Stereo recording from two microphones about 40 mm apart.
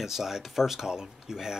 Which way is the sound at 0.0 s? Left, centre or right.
Centre.